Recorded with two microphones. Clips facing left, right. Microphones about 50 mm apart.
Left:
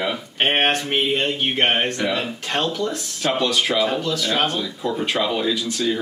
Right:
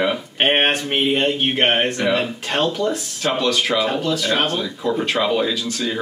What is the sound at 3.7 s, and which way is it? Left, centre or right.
Speech, right.